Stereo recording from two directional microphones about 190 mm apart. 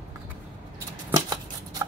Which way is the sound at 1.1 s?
20° right (ahead or behind).